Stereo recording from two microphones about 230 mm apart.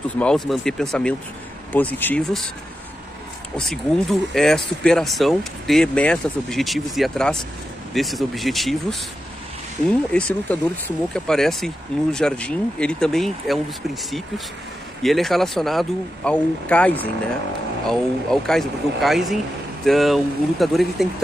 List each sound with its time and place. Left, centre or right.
0.2 s speech: centre
3.5 s speech: centre
9.8 s speech: centre
15.0 s speech: centre